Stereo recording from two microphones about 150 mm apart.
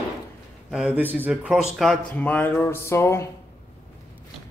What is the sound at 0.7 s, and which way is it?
A man's voice, 5° right (ahead or behind).